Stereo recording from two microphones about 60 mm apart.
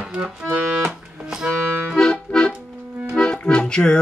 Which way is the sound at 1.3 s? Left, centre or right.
Centre.